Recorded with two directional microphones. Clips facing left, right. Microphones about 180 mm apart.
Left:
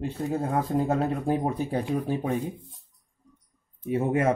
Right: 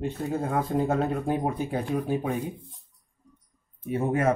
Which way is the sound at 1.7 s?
35° left (ahead or behind).